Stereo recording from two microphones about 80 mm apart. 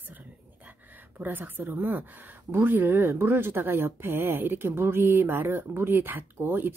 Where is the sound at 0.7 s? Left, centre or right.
Right.